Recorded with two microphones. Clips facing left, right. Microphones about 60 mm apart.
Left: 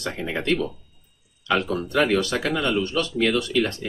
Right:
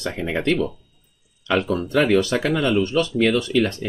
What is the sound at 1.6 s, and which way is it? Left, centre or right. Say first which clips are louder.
Speech: right 2 dB; right.